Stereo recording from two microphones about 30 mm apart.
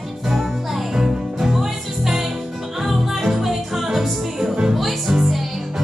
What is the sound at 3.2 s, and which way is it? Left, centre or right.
Music, centre.